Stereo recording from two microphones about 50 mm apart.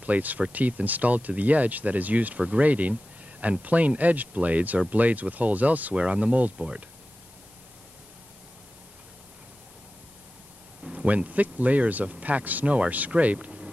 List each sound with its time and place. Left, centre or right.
0.0 s speech: right
5.9 s speech: right
10.8 s speech: right